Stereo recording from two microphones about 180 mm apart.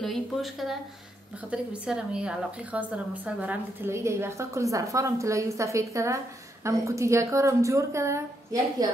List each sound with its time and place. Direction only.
0.0 s a woman's voice: centre (ahead or behind); by 8.8 s 15° right (ahead or behind)